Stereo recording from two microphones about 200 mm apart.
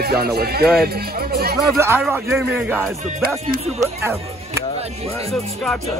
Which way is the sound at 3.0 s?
35° right (ahead or behind).